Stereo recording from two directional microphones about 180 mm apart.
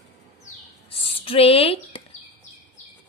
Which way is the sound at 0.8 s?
30° left (ahead or behind).